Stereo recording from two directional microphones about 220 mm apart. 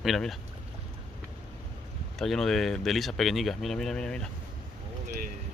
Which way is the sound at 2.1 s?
Centre (ahead or behind).